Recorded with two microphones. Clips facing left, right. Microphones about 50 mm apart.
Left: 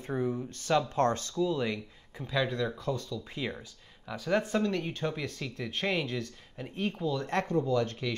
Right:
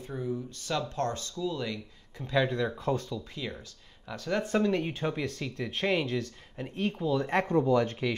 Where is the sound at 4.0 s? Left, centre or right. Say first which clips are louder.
Left 2 dB; centre.